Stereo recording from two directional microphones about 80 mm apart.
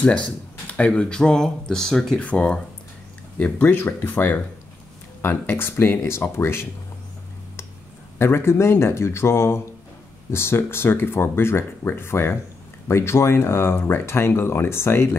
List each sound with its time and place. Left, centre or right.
0.7 s speech: centre
2.1 s speech: centre; by 6.7 s left
8.2 s speech: left